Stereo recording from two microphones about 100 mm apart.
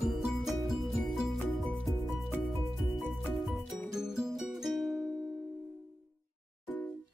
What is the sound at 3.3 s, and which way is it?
Music, centre (ahead or behind).